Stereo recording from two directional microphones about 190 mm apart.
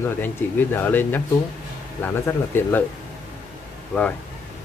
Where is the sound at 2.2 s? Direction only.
10° left (ahead or behind).